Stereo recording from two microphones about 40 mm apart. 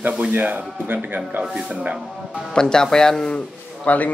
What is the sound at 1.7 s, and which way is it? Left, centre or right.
Speech, right.